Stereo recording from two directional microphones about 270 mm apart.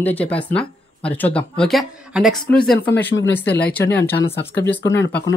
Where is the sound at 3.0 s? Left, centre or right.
Left.